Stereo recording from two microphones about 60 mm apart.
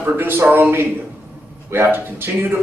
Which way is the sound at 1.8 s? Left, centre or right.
Right.